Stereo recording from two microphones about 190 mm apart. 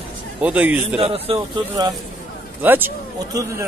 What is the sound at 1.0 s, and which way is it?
Speech, 30° right (ahead or behind).